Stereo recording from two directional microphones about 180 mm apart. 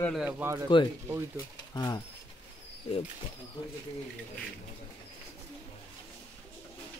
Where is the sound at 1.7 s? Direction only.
20° left (ahead or behind).